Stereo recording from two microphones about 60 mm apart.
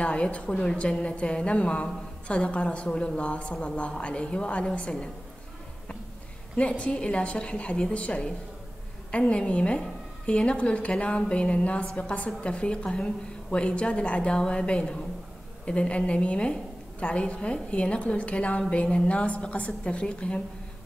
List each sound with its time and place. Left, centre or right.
0.0 s a woman's voice: centre
6.5 s a woman's voice: centre